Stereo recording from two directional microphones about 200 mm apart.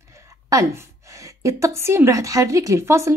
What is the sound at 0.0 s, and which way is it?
A woman's voice, 15° right (ahead or behind).